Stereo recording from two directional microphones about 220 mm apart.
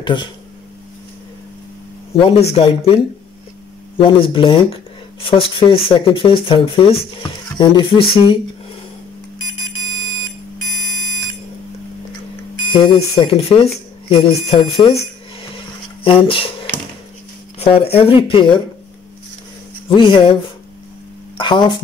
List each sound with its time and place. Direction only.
0.0 s speech: 20° left (ahead or behind)
2.1 s speech: 25° left (ahead or behind)
4.0 s speech: 25° left (ahead or behind)
9.8 s alarm: centre (ahead or behind)
10.6 s alarm clock: centre (ahead or behind)
12.6 s speech: 25° left (ahead or behind)
15.5 s a sound: 25° left (ahead or behind)
17.6 s speech: 25° left (ahead or behind)
20.0 s speech: 20° left (ahead or behind)
21.4 s speech: 20° left (ahead or behind)